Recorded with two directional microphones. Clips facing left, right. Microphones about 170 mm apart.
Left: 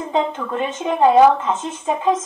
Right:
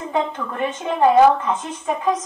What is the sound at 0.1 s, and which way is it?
A woman's voice, 20° left (ahead or behind).